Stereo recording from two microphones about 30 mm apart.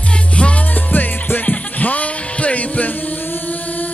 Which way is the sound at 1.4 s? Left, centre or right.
Left.